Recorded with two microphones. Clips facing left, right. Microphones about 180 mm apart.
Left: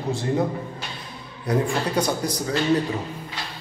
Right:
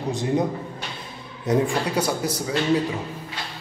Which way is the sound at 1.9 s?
10° right (ahead or behind).